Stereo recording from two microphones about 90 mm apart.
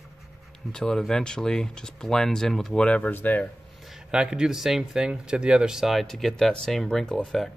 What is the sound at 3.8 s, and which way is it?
Speech, 5° right (ahead or behind).